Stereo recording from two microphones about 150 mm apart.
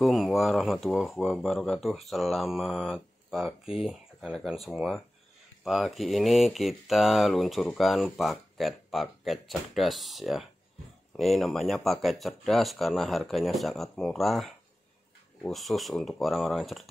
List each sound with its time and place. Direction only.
0.0 s speech: centre (ahead or behind)